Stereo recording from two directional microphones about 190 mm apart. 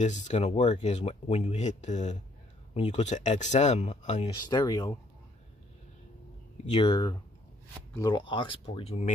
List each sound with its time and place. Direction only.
0.0 s speech: 40° left (ahead or behind)
4.4 s speech: 20° left (ahead or behind)
6.6 s speech: 30° left (ahead or behind)